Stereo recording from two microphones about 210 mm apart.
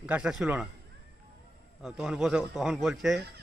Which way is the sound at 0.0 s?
5° right (ahead or behind).